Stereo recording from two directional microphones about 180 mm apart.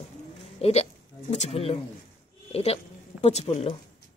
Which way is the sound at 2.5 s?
35° left (ahead or behind).